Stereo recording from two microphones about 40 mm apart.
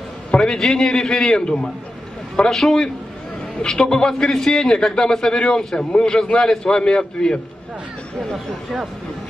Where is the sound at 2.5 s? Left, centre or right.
Centre; by 7.3 s left.